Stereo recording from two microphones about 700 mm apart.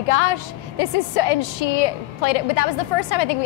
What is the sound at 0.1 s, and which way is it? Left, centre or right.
A woman's voice, left.